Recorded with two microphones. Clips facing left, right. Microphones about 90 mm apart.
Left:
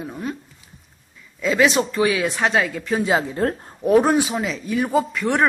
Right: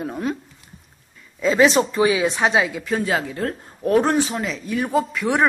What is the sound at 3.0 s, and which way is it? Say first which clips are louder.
Speech: left 3 dB; 25° left (ahead or behind).